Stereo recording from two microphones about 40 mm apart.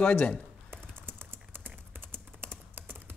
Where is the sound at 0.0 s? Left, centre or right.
Left.